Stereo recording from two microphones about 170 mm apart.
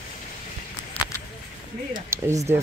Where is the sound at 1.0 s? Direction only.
35° left (ahead or behind).